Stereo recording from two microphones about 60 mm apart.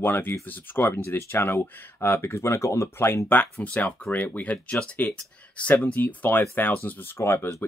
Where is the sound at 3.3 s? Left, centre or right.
Left.